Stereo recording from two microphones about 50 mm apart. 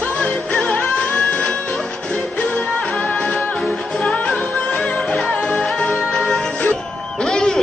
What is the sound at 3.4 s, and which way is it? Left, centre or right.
Music, centre.